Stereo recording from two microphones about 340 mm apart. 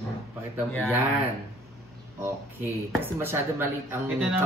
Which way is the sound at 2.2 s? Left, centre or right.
Centre.